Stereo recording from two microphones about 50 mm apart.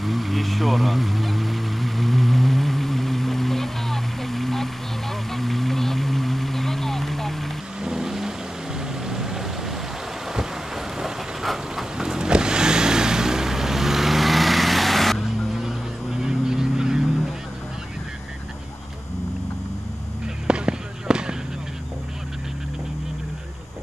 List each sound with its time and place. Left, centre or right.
0.0 s vehicle: centre
7.8 s vehicle: centre
11.0 s vehicle: centre
15.5 s vehicle: centre
20.4 s fireworks: centre